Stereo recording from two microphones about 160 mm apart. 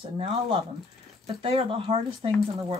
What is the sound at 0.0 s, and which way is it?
Speech, 40° right (ahead or behind).